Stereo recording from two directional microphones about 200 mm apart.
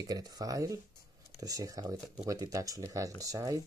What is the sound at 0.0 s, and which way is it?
Speech, 20° right (ahead or behind).